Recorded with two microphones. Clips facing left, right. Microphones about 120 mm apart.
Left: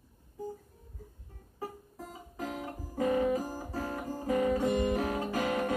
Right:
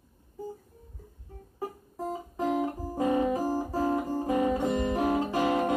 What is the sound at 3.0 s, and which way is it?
Music, 25° right (ahead or behind).